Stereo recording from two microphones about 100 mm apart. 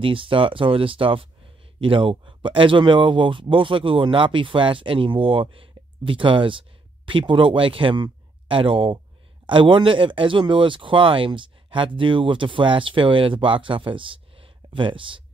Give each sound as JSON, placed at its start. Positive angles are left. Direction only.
{"t": 0.0, "sound": "speech", "side_deg": -60}